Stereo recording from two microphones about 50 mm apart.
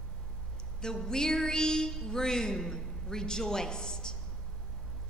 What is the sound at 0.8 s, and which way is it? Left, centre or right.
A woman's voice, centre.